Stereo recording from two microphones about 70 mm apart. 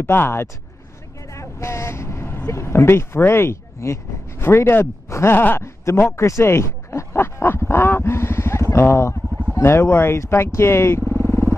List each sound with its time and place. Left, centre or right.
0.0 s speech: left
1.3 s vehicle: left
2.4 s speech: left
11.1 s vehicle: left